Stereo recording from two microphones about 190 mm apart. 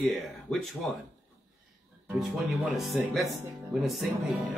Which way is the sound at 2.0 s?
Centre (ahead or behind).